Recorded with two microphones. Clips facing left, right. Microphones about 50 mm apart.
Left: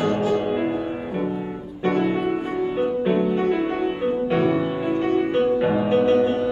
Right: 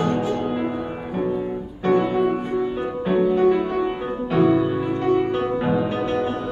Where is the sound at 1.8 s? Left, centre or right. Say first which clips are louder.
Right 2 dB; centre.